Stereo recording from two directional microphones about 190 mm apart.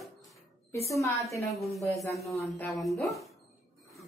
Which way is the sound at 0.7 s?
15° left (ahead or behind).